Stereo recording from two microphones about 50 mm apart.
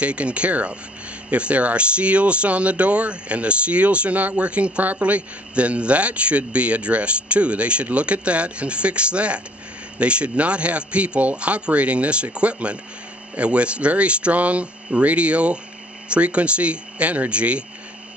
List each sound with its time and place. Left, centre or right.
0.0 s speech: right